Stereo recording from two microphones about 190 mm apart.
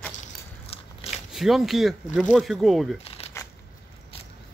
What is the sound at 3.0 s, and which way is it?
Shuffling cards, 30° left (ahead or behind).